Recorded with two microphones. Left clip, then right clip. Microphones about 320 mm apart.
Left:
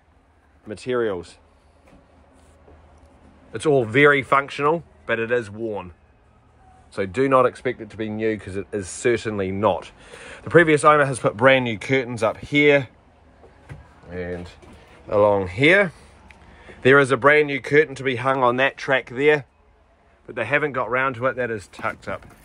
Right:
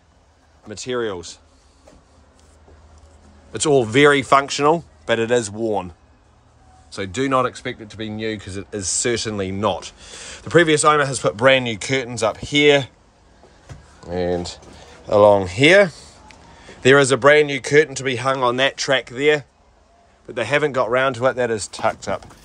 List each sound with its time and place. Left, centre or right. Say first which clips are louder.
0.7 s speech: left 1 dB; centre
3.5 s speech: right 2 dB; centre
6.9 s speech: left 2 dB; centre
14.1 s speech: right 9 dB; centre